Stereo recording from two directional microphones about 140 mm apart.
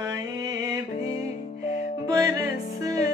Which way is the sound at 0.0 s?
25° right (ahead or behind).